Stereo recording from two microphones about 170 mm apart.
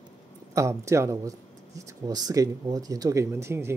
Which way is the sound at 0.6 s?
15° right (ahead or behind).